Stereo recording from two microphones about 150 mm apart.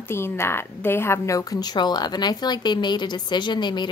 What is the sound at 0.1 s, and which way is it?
A woman's voice, 15° left (ahead or behind).